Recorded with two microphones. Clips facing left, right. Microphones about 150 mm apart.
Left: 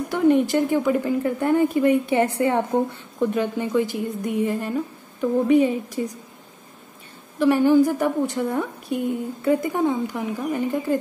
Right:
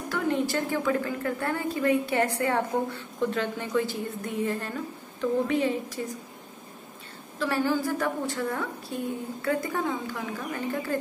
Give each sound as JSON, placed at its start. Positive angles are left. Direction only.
{"t": 0.1, "sound": "a woman's voice", "side_deg": 20}
{"t": 7.3, "sound": "a woman's voice", "side_deg": 15}